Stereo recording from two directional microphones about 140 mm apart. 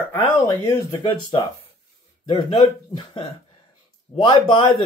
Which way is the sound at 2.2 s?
35° left (ahead or behind).